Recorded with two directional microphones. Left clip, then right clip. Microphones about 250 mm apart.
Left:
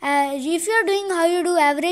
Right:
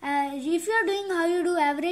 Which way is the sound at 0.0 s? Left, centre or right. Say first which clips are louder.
Left 7 dB; left.